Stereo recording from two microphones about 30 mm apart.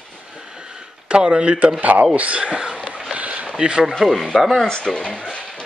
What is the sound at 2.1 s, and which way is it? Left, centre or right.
Speech, right.